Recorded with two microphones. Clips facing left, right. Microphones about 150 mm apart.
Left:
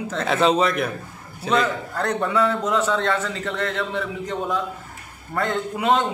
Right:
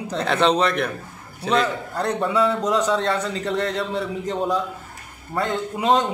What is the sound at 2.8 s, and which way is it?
Speech, 15° right (ahead or behind).